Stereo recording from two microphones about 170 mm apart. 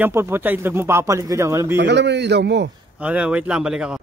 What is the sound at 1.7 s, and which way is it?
A man's voice, 90° right.